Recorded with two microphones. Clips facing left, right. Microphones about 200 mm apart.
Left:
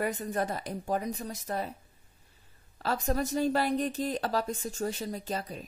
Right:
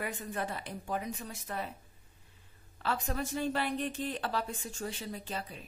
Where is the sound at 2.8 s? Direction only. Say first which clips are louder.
Left 5 dB; 40° left (ahead or behind).